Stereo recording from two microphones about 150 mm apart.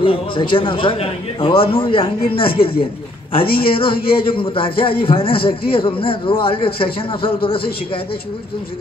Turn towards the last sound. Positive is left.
turn(degrees=35)  # may be behind; listen again after turning